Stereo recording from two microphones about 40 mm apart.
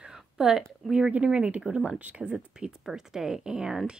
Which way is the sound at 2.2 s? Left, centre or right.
Right.